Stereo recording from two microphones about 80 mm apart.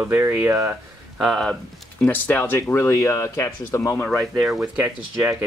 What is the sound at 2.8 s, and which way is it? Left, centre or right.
Speech, left.